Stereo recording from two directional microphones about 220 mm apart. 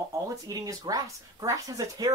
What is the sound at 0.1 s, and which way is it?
Speech, 15° right (ahead or behind).